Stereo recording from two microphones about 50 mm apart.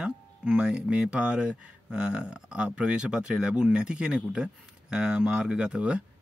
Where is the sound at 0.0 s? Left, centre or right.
Centre.